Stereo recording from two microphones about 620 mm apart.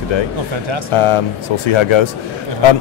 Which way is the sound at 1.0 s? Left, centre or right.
Left.